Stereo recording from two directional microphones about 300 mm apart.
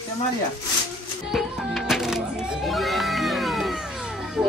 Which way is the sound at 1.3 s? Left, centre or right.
Centre.